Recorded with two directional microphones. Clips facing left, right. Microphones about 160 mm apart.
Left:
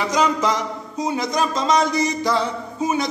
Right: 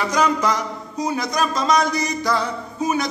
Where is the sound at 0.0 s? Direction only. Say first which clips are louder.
Even; 20° left (ahead or behind).